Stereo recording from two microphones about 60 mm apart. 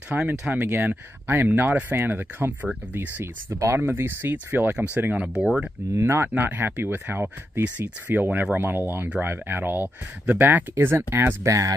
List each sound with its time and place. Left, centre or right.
0.1 s speech: right
0.5 s speech: right
3.5 s speech: right
3.8 s speech: right
5.2 s speech: centre
5.9 s speech: right
6.3 s speech: right
10.7 s speech: right
11.4 s speech: right